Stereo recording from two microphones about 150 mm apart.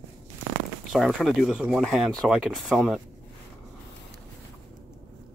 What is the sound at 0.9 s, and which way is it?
Speech, centre (ahead or behind).